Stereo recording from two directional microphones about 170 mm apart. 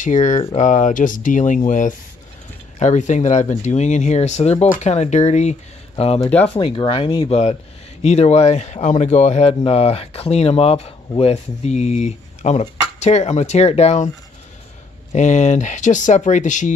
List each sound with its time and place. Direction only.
0.0 s speech: 45° left (ahead or behind); by 7.3 s 30° left (ahead or behind)
8.0 s speech: 40° left (ahead or behind)
15.1 s speech: 45° left (ahead or behind)